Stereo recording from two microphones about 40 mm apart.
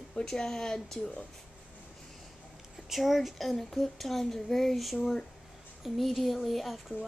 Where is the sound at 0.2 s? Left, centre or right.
Left.